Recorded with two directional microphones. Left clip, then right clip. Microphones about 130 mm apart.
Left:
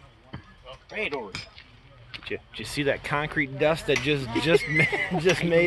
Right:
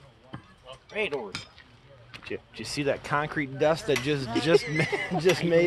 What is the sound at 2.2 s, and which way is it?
Speech, centre (ahead or behind).